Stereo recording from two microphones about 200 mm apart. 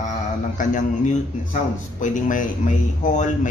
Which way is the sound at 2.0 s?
40° left (ahead or behind).